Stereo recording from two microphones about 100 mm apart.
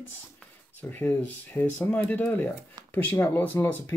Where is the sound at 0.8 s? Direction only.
20° left (ahead or behind).